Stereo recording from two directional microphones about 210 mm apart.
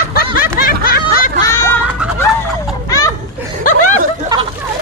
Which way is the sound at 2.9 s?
15° left (ahead or behind).